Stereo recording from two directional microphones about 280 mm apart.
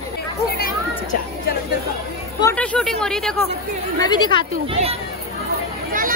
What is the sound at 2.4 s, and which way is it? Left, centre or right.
Speech, centre.